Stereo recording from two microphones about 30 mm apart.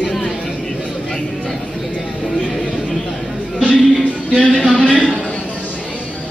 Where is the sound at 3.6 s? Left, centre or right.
Right.